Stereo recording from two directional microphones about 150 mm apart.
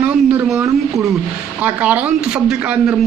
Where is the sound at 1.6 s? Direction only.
10° right (ahead or behind).